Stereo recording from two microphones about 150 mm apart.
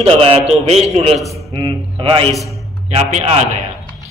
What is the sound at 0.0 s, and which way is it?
A man's voice, 40° right (ahead or behind).